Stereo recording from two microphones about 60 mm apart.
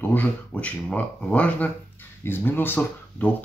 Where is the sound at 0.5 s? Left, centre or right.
Left.